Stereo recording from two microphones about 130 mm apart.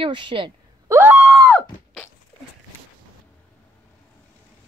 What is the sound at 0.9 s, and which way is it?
Screaming, 15° right (ahead or behind).